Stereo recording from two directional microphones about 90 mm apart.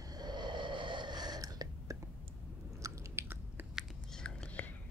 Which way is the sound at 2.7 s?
30° right (ahead or behind).